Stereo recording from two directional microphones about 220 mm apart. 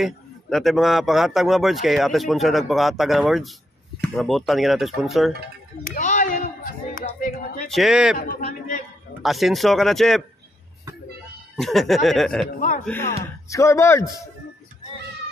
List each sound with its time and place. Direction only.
0.0 s a man's voice: centre (ahead or behind)
5.9 s a sound: 35° left (ahead or behind)
7.7 s a man's voice: centre (ahead or behind)
8.2 s a man's voice: 35° left (ahead or behind)
9.2 s a man's voice: centre (ahead or behind)
11.5 s a man's voice: centre (ahead or behind)
12.5 s speech: 35° left (ahead or behind)
12.8 s a man's voice: 10° left (ahead or behind)